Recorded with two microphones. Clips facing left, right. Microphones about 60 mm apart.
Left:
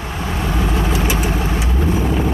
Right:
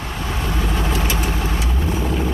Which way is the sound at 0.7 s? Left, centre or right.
Centre.